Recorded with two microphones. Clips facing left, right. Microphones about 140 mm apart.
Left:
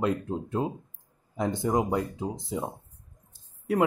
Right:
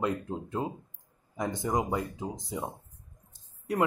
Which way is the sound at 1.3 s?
25° left (ahead or behind).